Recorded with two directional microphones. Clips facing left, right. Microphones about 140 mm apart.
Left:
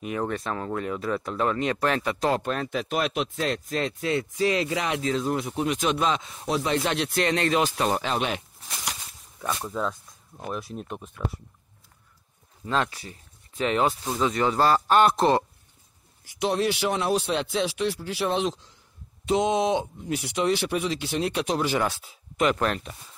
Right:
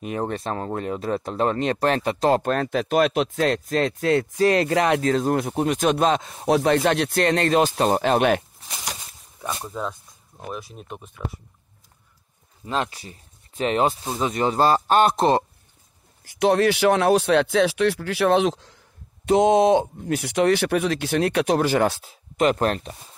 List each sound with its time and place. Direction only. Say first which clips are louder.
0.0 s speech: right 2 dB; 30° right (ahead or behind)
2.3 s speech: right 6 dB; 45° right (ahead or behind)
8.1 s speech: right 9 dB; 55° right (ahead or behind)
9.7 s speech: left 1 dB; 5° right (ahead or behind)
12.6 s speech: even; 20° right (ahead or behind)
16.3 s speech: right 6 dB; 65° right (ahead or behind)
19.2 s speech: right 6 dB; 55° right (ahead or behind); by 23.1 s 35° right (ahead or behind)